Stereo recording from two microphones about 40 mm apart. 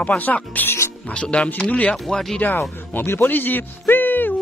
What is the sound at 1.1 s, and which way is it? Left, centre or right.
Speech, left.